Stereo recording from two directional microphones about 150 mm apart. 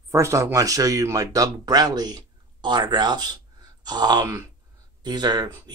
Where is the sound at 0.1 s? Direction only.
20° right (ahead or behind).